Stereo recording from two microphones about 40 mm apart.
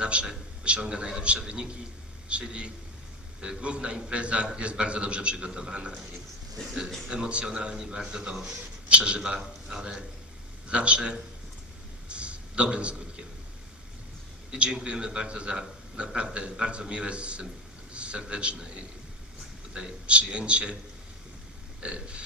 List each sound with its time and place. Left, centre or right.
0.0 s a man's voice: right
7.1 s a man's voice: right
10.7 s a man's voice: right
12.1 s a sound: right
14.5 s a man's voice: right
19.7 s a man's voice: right
21.8 s a man's voice: right